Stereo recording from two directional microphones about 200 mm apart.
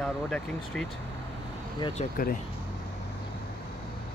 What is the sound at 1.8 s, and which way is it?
Speech, 25° left (ahead or behind).